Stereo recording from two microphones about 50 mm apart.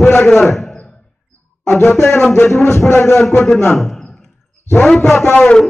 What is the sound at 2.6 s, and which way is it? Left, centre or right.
Speech, left.